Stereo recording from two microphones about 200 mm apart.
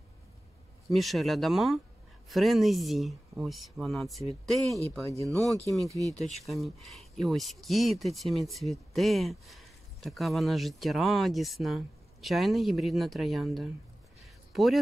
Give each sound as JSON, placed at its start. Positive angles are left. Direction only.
{"t": 0.9, "sound": "speech", "side_deg": 0}
{"t": 5.2, "sound": "speech", "side_deg": -15}
{"t": 6.4, "sound": "speech", "side_deg": 0}
{"t": 14.2, "sound": "a sound", "side_deg": 0}